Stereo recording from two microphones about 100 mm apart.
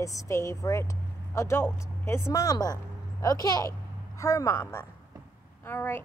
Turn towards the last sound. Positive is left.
turn(degrees=25)  # may be behind; listen again after turning